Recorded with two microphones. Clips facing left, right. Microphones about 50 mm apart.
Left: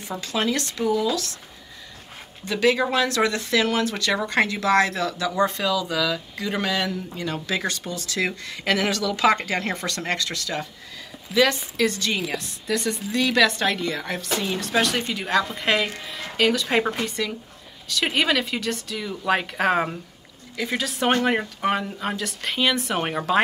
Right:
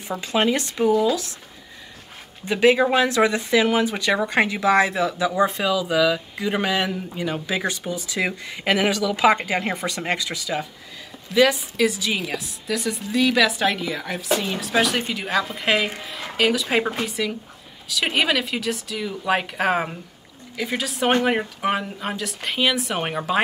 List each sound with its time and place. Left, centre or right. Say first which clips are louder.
0.2 s speech: right 4 dB; right
2.4 s speech: right 4 dB; centre